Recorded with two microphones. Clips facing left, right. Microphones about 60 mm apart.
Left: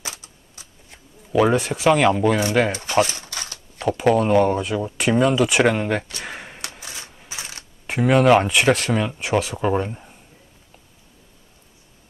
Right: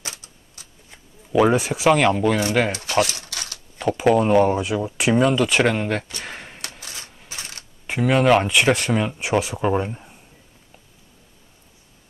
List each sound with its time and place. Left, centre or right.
0.0 s typewriter: left
1.3 s speech: centre
2.7 s speech: left
3.2 s a sound: left
3.8 s speech: centre
6.2 s a sound: centre
6.8 s coin: left
7.2 s a sound: centre
7.8 s speech: centre